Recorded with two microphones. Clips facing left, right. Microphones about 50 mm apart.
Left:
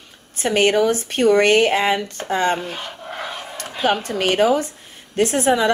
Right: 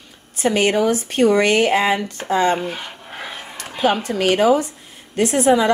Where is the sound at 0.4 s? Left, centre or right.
Left.